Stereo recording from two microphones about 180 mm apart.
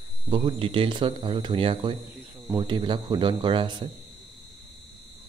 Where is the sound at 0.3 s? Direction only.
30° right (ahead or behind).